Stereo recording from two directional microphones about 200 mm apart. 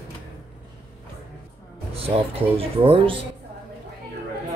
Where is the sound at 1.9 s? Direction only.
30° right (ahead or behind).